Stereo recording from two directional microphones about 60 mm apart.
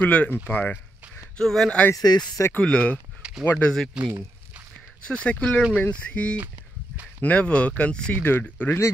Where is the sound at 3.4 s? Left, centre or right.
Left.